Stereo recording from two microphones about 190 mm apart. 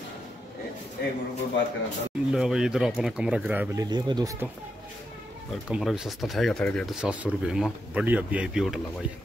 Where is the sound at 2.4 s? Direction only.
5° right (ahead or behind).